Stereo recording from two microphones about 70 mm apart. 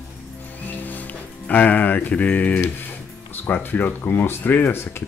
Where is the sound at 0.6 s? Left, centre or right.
Left.